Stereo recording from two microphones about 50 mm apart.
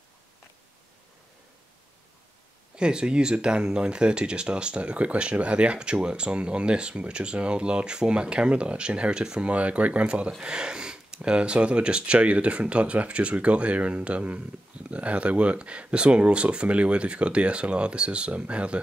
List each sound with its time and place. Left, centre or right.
2.7 s speech: centre
9.5 s speech: right
10.4 s a sound: centre
11.2 s speech: right